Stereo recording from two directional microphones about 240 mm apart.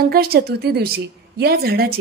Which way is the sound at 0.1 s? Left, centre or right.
Right.